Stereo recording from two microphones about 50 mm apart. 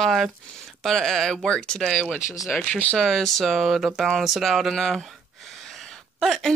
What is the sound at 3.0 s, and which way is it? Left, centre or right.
Speech, centre.